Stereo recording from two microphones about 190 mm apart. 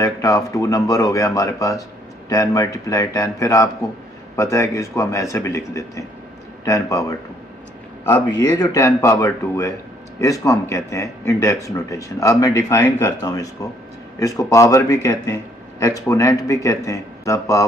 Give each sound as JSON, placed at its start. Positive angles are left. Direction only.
{"t": 0.0, "sound": "speech", "side_deg": 15}